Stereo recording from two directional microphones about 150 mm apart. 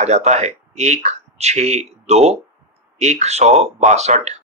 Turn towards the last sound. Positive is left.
turn(degrees=-50)  # may be behind; listen again after turning